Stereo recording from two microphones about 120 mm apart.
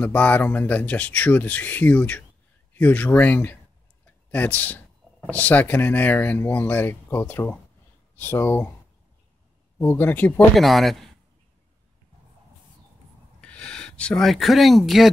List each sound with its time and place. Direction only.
0.0 s speech: 10° left (ahead or behind)
4.0 s a sound: 15° left (ahead or behind)
5.3 s speech: 15° left (ahead or behind)
9.8 s speech: 15° left (ahead or behind)
10.5 s speech: centre (ahead or behind)
13.4 s speech: 10° left (ahead or behind)